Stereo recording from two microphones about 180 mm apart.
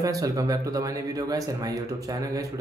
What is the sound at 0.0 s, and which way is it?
Speech, 20° right (ahead or behind).